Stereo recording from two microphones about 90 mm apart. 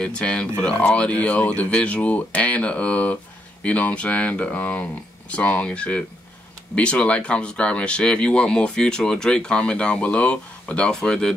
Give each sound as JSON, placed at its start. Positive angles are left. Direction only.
{"t": 0.0, "sound": "speech", "side_deg": 10}